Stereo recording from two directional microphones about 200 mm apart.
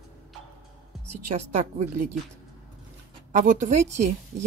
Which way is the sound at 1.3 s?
35° right (ahead or behind).